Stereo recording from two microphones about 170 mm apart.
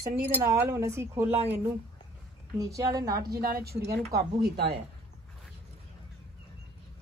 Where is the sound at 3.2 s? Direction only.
65° right (ahead or behind).